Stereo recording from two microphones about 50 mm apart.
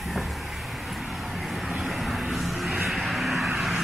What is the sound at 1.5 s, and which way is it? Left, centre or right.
Vehicle, centre.